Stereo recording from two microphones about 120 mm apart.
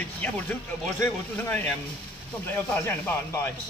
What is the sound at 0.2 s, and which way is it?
Speech, 15° left (ahead or behind).